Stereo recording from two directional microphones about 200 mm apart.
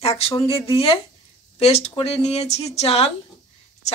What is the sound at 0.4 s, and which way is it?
A woman's voice, 25° left (ahead or behind).